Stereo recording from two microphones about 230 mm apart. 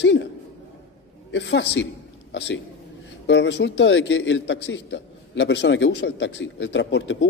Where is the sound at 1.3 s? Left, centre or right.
Left.